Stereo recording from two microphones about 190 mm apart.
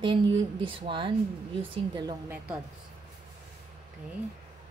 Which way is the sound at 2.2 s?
10° right (ahead or behind).